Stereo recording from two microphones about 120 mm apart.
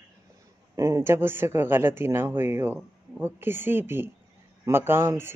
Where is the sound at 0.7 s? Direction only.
25° right (ahead or behind).